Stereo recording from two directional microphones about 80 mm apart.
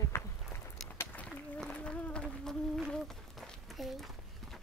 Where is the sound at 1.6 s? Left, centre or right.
Centre.